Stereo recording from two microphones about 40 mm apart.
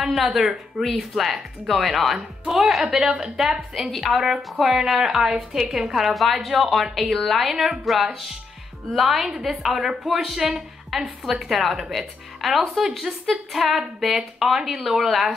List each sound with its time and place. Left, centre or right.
0.3 s a woman's voice: centre
0.8 s a woman's voice: centre
4.7 s a woman's voice: centre